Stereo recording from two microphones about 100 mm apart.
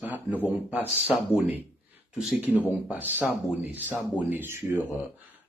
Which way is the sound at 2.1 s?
5° right (ahead or behind).